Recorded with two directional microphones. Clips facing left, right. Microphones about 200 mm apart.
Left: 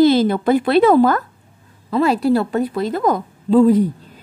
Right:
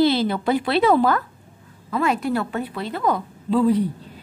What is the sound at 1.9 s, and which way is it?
Speech, 35° left (ahead or behind).